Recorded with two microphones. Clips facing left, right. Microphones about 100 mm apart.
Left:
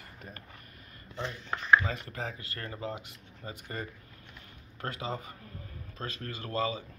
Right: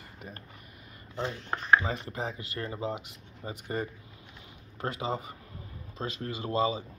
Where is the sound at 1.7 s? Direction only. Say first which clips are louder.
Even; 25° right (ahead or behind).